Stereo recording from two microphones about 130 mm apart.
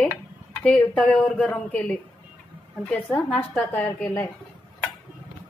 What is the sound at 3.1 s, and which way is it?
A woman's voice, 10° left (ahead or behind).